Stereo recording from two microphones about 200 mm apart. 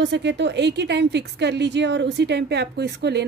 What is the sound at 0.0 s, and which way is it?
Speech, 60° right (ahead or behind).